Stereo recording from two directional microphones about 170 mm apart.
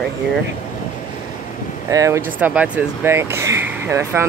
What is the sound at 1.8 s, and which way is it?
Speech, 20° right (ahead or behind).